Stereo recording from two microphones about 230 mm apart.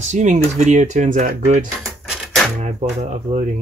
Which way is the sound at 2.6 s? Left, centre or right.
Right.